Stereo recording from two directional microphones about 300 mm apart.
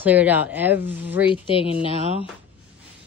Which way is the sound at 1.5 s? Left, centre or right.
Centre.